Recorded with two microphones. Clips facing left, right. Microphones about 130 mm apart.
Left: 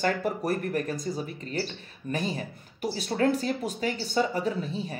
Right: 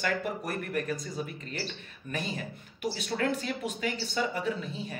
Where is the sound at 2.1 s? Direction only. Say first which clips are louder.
Left 5 dB; 35° left (ahead or behind).